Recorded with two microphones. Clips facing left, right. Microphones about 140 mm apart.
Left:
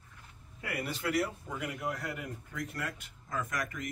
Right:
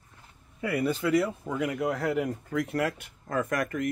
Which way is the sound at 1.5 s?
90° right.